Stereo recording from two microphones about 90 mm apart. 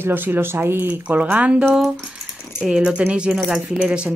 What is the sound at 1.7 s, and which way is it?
Speech, 5° right (ahead or behind).